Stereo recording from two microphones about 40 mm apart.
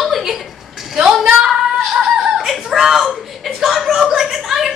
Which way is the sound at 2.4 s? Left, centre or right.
Centre.